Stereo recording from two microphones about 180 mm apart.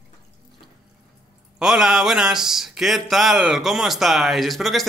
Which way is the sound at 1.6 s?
5° right (ahead or behind).